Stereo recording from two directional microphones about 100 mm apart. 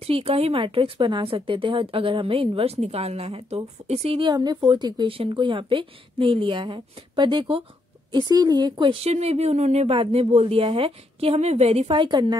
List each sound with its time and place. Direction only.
0.0 s a woman's voice: 80° right
4.2 s speech: 45° right (ahead or behind)
5.1 s a woman's voice: 60° right (ahead or behind)
8.1 s speech: 45° right (ahead or behind)
9.0 s speech: 90° right; by 12.4 s 50° right (ahead or behind)